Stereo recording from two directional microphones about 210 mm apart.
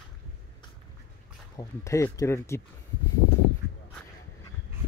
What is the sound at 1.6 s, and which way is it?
Speech, 15° left (ahead or behind).